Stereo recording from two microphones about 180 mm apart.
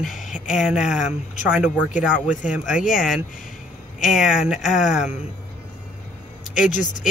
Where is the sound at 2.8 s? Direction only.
Centre (ahead or behind).